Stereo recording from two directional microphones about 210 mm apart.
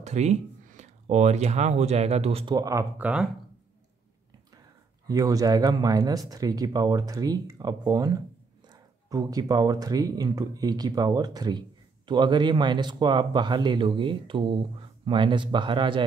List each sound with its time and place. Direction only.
0.0 s speech: 35° right (ahead or behind); by 3.3 s 5° right (ahead or behind)
5.0 s speech: 15° right (ahead or behind)